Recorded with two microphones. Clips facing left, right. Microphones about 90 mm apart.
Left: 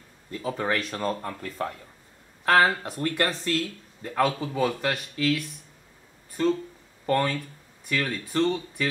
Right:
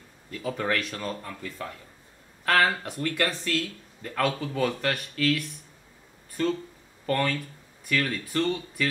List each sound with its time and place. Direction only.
0.4 s speech: 15° left (ahead or behind)
0.7 s speech: 35° left (ahead or behind)
2.5 s speech: 30° left (ahead or behind)
4.0 s speech: 15° left (ahead or behind)
7.1 s speech: 20° left (ahead or behind)